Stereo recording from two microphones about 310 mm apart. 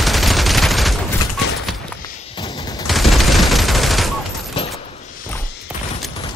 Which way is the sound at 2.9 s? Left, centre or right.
Centre.